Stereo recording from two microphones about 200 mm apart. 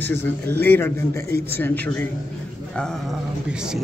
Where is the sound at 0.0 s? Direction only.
10° left (ahead or behind).